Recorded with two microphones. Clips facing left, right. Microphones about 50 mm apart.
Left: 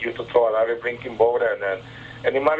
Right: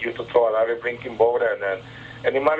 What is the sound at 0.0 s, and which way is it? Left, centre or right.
Speech, centre.